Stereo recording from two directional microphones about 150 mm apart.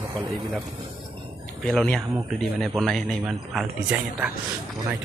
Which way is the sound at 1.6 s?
Centre (ahead or behind).